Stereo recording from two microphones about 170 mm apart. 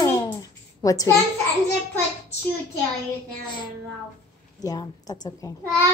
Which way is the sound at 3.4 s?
25° left (ahead or behind).